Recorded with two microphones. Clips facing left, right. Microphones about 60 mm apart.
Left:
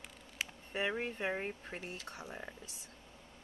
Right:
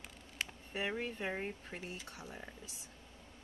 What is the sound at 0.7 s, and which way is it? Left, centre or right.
Speech, left.